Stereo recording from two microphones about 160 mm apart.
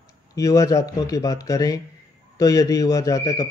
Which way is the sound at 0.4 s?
20° left (ahead or behind).